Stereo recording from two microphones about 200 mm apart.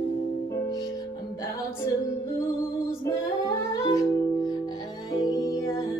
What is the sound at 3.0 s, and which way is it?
Music, 20° left (ahead or behind).